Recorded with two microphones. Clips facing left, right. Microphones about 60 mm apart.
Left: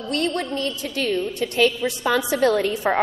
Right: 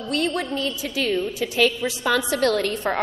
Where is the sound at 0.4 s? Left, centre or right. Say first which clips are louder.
Even; centre.